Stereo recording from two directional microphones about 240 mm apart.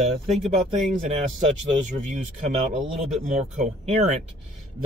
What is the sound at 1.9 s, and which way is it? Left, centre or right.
Speech, right.